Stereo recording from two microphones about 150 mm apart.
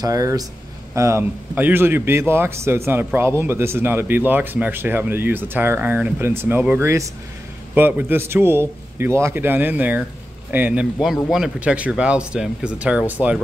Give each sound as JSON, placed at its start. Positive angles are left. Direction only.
{"t": 0.0, "sound": "a man's voice", "side_deg": -20}